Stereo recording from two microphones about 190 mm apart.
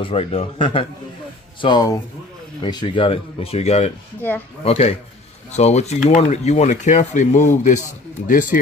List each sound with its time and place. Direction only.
0.0 s a man's voice: 30° left (ahead or behind)